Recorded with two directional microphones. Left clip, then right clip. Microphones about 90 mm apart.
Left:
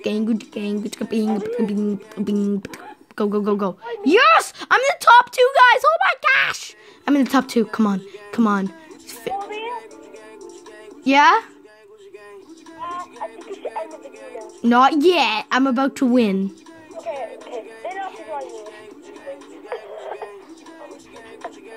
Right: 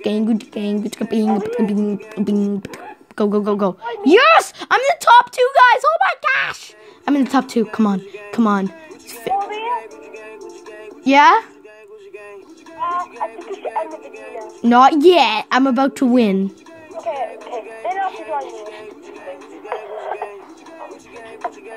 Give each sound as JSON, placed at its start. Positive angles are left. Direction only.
{"t": 0.0, "sound": "a woman's voice", "side_deg": -10}
{"t": 7.6, "sound": "speech", "side_deg": 5}
{"t": 9.2, "sound": "a sound", "side_deg": -5}
{"t": 9.5, "sound": "music", "side_deg": -35}
{"t": 11.1, "sound": "speech", "side_deg": -5}
{"t": 12.8, "sound": "music", "side_deg": -35}
{"t": 14.6, "sound": "a woman's voice", "side_deg": -5}
{"t": 17.0, "sound": "speech", "side_deg": -35}
{"t": 19.7, "sound": "music", "side_deg": -30}